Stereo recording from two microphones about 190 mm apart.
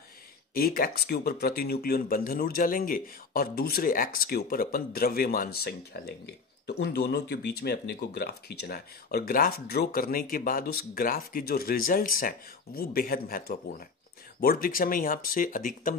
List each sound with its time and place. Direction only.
0.6 s speech: 50° left (ahead or behind)